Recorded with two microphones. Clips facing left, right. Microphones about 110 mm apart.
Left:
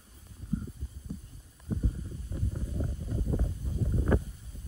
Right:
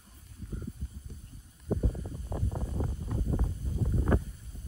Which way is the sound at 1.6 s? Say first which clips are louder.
Right 3 dB; 75° right (ahead or behind).